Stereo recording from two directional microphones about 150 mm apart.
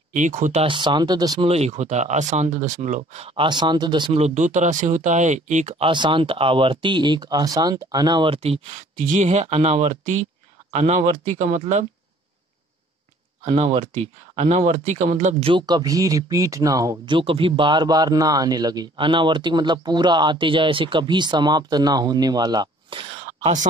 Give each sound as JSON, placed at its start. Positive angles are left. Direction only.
{"t": 0.1, "sound": "speech", "side_deg": -55}
{"t": 0.7, "sound": "a man's voice", "side_deg": -30}
{"t": 1.5, "sound": "speech", "side_deg": -45}
{"t": 4.2, "sound": "speech", "side_deg": -55}
{"t": 5.9, "sound": "speech", "side_deg": -30}
{"t": 9.0, "sound": "speech", "side_deg": -55}
{"t": 13.5, "sound": "speech", "side_deg": -40}
{"t": 15.5, "sound": "a man's voice", "side_deg": -30}
{"t": 17.1, "sound": "a man's voice", "side_deg": -35}